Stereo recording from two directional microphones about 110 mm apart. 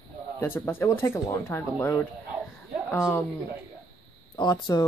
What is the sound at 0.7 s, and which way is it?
Speech, 20° left (ahead or behind).